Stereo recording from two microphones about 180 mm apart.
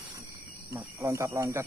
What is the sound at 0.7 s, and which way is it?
Speech, 15° right (ahead or behind).